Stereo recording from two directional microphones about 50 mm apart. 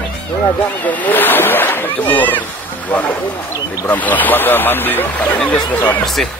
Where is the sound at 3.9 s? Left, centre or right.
Left.